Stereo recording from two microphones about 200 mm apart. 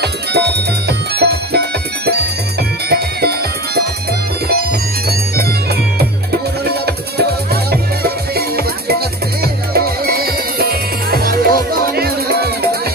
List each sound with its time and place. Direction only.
0.0 s music: 55° right (ahead or behind)
5.0 s music: 50° right (ahead or behind)
8.4 s music: 50° right (ahead or behind)